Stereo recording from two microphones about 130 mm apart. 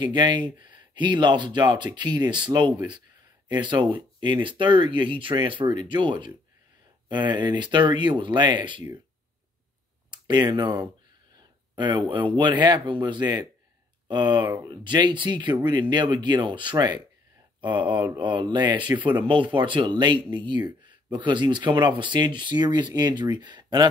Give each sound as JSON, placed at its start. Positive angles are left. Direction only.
{"t": 0.0, "sound": "speech", "side_deg": -35}
{"t": 10.1, "sound": "speech", "side_deg": -35}